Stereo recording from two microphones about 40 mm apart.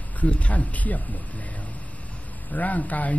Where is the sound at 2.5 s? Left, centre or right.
Left.